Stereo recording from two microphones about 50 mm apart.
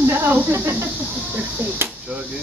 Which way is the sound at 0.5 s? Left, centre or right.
Right.